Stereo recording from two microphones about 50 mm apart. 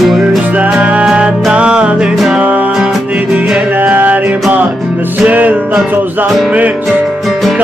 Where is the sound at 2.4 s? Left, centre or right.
Right.